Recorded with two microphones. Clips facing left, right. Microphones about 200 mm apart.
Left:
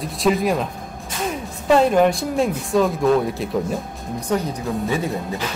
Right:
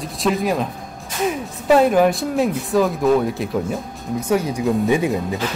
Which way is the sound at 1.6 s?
5° right (ahead or behind).